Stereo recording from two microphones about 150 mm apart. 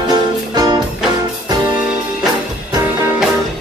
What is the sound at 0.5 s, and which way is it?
Music, 25° right (ahead or behind).